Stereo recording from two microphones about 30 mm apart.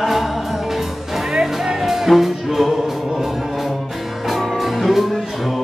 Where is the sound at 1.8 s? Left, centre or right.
Centre.